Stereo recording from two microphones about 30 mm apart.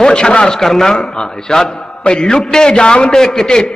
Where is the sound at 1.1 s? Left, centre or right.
Left.